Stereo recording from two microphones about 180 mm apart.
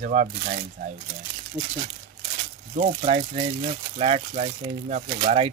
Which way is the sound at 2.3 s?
45° right (ahead or behind).